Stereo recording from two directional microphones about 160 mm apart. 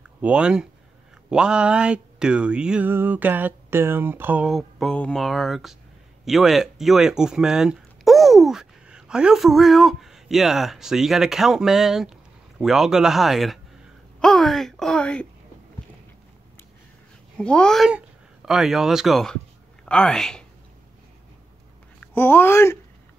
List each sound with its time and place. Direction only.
0.0 s speech: 5° right (ahead or behind)
1.3 s a sound: 5° right (ahead or behind)
6.2 s speech: centre (ahead or behind)
17.4 s speech: 5° left (ahead or behind)
22.0 s speech: 15° left (ahead or behind)